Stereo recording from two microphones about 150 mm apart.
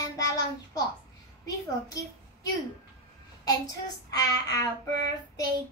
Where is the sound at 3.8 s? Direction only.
25° left (ahead or behind).